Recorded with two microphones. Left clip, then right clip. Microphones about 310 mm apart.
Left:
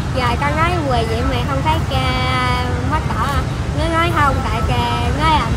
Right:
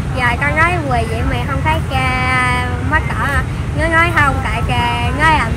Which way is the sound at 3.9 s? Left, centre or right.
Centre.